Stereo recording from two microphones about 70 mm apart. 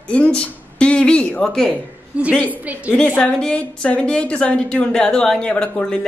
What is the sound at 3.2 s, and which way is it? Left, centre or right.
Speech, centre.